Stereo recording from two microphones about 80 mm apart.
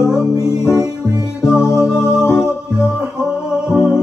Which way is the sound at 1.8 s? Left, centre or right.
Centre.